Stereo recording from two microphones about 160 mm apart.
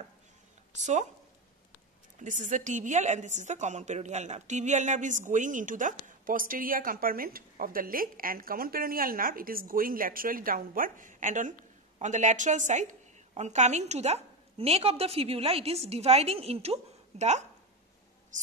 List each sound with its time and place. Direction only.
0.7 s speech: 50° right (ahead or behind)
2.1 s a woman's voice: 50° right (ahead or behind)